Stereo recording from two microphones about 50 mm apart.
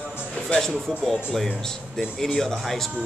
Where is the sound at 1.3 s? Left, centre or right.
Centre.